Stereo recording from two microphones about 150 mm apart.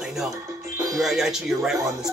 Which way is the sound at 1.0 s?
Centre (ahead or behind).